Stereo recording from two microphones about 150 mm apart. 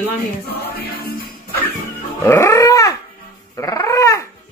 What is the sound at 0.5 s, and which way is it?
Music, 90° left.